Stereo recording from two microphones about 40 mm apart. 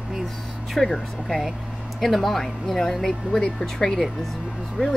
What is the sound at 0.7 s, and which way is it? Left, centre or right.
Speech, centre.